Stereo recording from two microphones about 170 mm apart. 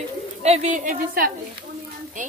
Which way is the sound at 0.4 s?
40° right (ahead or behind).